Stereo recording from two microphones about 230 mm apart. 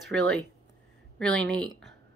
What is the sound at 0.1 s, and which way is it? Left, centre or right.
Speech, centre.